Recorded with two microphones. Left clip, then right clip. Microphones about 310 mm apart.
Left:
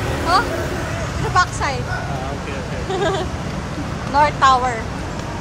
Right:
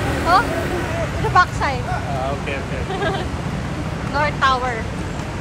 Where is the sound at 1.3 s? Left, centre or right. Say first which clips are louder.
Right 1 dB; centre.